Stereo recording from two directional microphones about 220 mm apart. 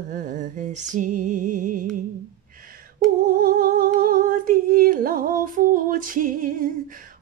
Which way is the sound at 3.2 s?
40° right (ahead or behind).